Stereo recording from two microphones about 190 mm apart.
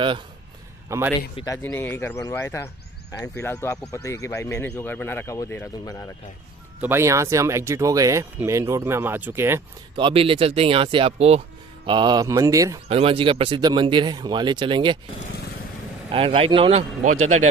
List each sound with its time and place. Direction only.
0.8 s a man's voice: 15° right (ahead or behind)
1.3 s speech: 20° left (ahead or behind)
6.8 s speech: 15° right (ahead or behind)
9.9 s speech: 25° right (ahead or behind)
12.8 s speech: 30° right (ahead or behind)
16.1 s speech: 30° right (ahead or behind)